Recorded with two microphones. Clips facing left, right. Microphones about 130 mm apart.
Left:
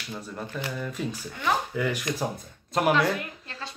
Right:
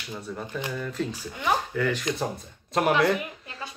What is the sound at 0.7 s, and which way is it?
Speech, 5° left (ahead or behind).